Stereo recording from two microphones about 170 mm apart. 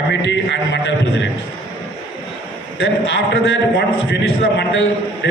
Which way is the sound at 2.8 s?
90° left.